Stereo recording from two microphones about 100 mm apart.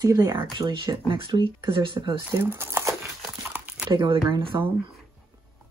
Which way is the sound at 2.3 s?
25° right (ahead or behind).